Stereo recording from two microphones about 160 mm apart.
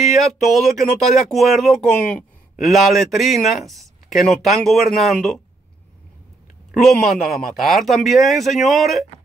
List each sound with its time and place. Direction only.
0.2 s a man's voice: centre (ahead or behind)
6.7 s a man's voice: centre (ahead or behind)